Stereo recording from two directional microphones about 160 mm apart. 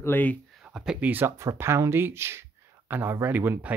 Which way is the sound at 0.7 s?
5° right (ahead or behind).